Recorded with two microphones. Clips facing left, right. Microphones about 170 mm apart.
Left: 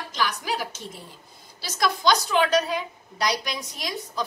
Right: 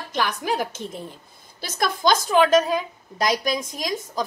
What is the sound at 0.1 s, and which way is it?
A woman's voice, 55° right (ahead or behind).